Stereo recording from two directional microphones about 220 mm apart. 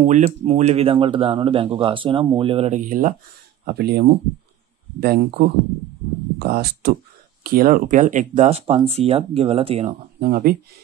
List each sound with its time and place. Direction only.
0.0 s speech: 30° right (ahead or behind)
3.6 s speech: 45° right (ahead or behind)
5.0 s speech: 45° right (ahead or behind); by 9.9 s 30° right (ahead or behind)
10.2 s speech: 45° right (ahead or behind)